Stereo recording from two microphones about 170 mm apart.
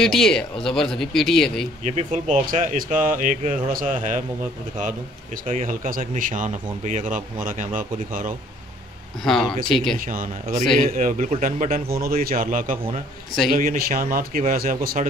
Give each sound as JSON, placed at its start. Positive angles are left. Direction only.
{"t": 0.0, "sound": "speech", "side_deg": 0}
{"t": 1.9, "sound": "speech", "side_deg": -40}
{"t": 5.5, "sound": "speech", "side_deg": -50}
{"t": 9.2, "sound": "speech", "side_deg": 5}
{"t": 9.9, "sound": "speech", "side_deg": -50}